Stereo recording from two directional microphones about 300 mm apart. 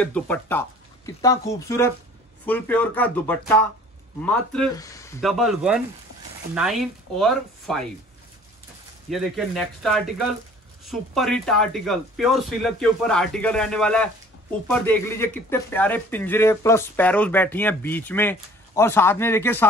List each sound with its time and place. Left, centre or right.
0.0 s speech: centre
9.1 s speech: centre